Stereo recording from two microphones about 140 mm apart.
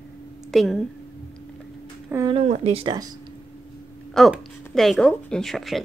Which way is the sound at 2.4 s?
55° right (ahead or behind).